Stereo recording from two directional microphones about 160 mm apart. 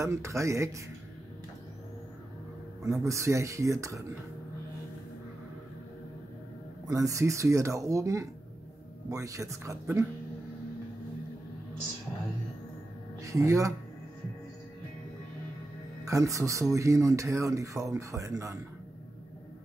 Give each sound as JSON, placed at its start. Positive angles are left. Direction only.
{"t": 0.0, "sound": "speech", "side_deg": -20}
{"t": 2.8, "sound": "speech", "side_deg": -20}
{"t": 6.9, "sound": "speech", "side_deg": -20}
{"t": 13.2, "sound": "speech", "side_deg": -20}
{"t": 16.1, "sound": "speech", "side_deg": -20}